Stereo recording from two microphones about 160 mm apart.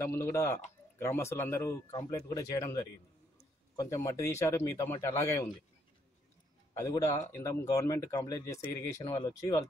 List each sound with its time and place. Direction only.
0.0 s speech: 15° left (ahead or behind)
6.7 s speech: 20° left (ahead or behind)
9.0 s speech: 30° left (ahead or behind)
9.4 s speech: 20° left (ahead or behind)